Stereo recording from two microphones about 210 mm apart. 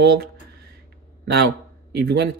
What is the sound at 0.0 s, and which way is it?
Speech, 50° right (ahead or behind).